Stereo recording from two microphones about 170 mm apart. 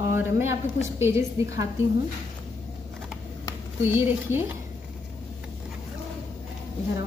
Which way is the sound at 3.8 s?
15° right (ahead or behind).